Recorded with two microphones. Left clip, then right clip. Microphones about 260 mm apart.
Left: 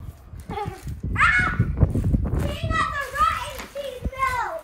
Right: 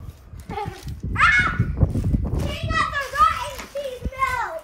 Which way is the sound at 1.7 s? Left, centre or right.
Right.